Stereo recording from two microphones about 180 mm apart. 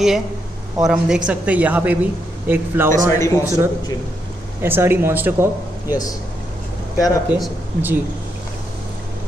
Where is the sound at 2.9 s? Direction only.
15° left (ahead or behind).